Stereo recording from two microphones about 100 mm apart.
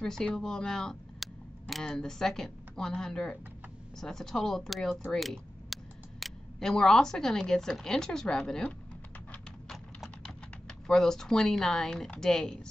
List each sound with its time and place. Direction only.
0.0 s speech: 5° left (ahead or behind)
10.9 s speech: 5° left (ahead or behind)